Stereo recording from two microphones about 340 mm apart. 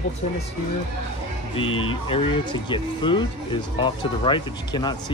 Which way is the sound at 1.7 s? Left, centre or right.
Left.